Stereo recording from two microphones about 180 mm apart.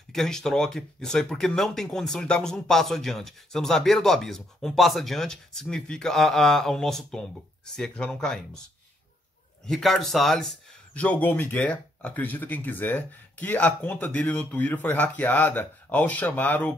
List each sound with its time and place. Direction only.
0.1 s speech: centre (ahead or behind)
9.7 s speech: centre (ahead or behind)